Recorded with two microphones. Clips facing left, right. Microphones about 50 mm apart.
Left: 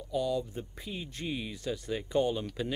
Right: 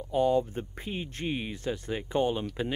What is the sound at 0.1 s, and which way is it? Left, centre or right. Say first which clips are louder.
Speech: right 6 dB; right.